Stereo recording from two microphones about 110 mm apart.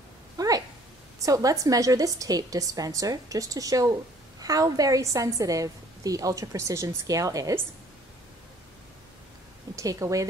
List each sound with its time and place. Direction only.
0.4 s a sound: 35° right (ahead or behind)
1.2 s a woman's voice: 30° right (ahead or behind)
9.8 s speech: 30° right (ahead or behind)